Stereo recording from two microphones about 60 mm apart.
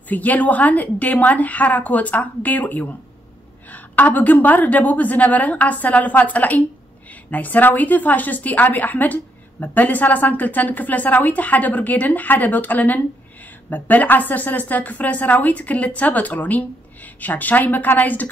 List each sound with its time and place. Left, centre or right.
0.1 s speech: left